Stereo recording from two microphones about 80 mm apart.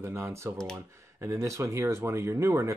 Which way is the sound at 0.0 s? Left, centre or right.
Right.